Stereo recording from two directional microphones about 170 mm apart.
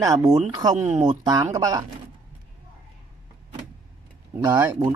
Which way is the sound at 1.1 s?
25° right (ahead or behind).